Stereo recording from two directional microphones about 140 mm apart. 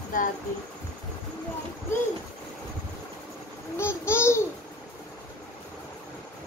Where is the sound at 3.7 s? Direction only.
20° left (ahead or behind).